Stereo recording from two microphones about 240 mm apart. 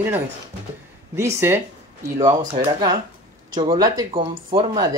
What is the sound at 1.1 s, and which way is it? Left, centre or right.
Speech, centre.